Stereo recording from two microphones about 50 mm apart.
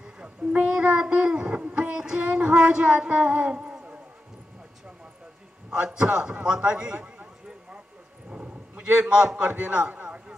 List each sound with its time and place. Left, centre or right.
0.2 s child singing: right
5.7 s a man's voice: centre
8.3 s dog: right
9.0 s a man's voice: centre
10.0 s a sound: right